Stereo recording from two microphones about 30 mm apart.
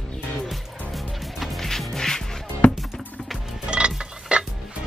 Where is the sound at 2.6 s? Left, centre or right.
Left.